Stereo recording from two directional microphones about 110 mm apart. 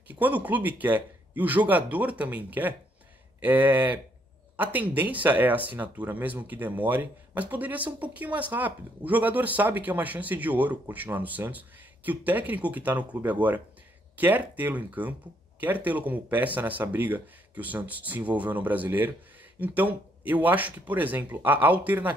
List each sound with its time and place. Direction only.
0.1 s speech: 15° right (ahead or behind)